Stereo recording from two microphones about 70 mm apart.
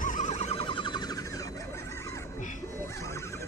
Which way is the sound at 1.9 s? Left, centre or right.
Left.